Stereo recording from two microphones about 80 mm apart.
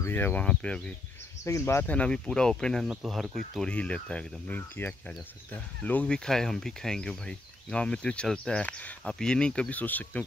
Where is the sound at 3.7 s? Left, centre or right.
Centre.